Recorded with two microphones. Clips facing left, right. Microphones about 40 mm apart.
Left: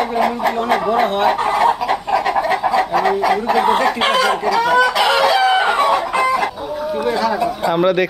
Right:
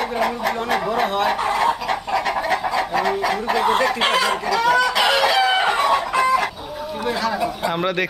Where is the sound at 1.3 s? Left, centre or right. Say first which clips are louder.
Left 4 dB; left.